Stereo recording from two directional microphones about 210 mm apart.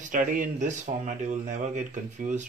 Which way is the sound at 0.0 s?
40° right (ahead or behind).